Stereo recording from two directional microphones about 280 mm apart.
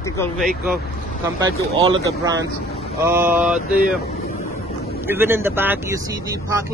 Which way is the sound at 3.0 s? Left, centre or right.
Centre.